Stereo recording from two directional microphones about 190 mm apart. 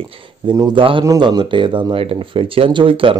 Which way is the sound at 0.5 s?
25° right (ahead or behind).